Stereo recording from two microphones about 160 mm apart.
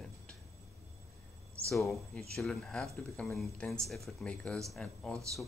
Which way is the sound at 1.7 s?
Centre (ahead or behind).